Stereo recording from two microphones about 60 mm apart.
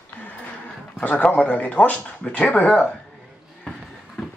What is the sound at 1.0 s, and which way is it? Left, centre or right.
Speech, left.